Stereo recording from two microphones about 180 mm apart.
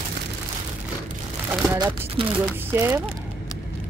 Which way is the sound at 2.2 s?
30° right (ahead or behind).